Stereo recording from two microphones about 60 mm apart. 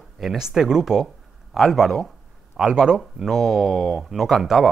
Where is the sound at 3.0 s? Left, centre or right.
Centre.